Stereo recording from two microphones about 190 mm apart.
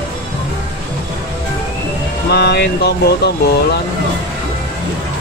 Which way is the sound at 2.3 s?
60° left (ahead or behind).